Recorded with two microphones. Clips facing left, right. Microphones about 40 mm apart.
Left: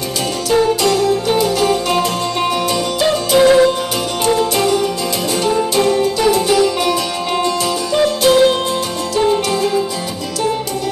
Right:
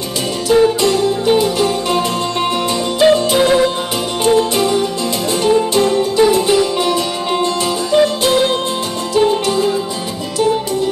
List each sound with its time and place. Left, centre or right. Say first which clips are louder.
0.5 s music: right 2 dB; centre
3.3 s music: left 3 dB; centre
4.4 s music: right 1 dB; right
6.1 s music: right 2 dB; right